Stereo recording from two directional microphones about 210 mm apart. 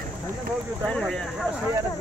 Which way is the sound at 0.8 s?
5° left (ahead or behind).